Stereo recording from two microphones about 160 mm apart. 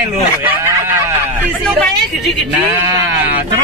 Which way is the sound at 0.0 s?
15° right (ahead or behind).